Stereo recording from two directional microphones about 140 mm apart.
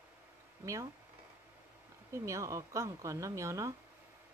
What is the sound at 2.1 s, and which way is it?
Speech, 20° right (ahead or behind).